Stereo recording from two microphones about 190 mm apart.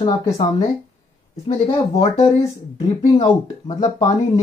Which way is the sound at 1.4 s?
30° left (ahead or behind).